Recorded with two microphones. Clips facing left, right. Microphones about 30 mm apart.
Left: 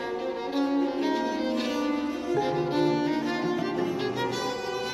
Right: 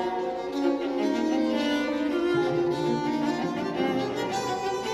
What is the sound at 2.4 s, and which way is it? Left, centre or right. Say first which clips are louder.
Music: even; left.